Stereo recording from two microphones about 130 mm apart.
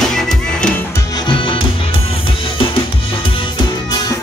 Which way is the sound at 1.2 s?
40° left (ahead or behind).